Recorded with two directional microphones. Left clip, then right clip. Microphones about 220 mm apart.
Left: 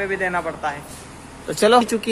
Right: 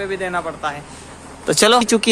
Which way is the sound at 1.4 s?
20° right (ahead or behind).